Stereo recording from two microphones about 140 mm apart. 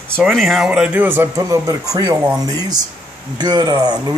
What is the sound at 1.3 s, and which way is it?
Speech, 25° right (ahead or behind).